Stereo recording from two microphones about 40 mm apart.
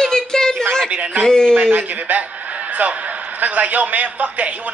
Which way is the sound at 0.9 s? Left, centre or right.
Right.